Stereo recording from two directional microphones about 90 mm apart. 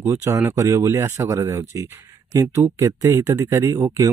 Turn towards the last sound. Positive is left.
turn(degrees=-30)  # may be behind; listen again after turning